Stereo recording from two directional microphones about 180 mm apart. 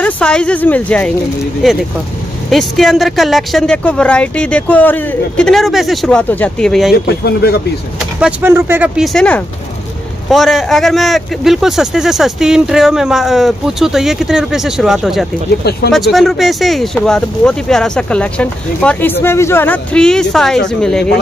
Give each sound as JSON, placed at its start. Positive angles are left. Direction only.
{"t": 0.0, "sound": "speech", "side_deg": 5}
{"t": 6.9, "sound": "speech", "side_deg": 65}
{"t": 8.2, "sound": "speech", "side_deg": -10}